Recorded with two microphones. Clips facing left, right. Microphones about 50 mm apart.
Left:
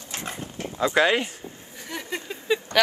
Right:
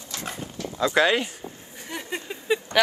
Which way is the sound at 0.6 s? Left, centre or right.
Left.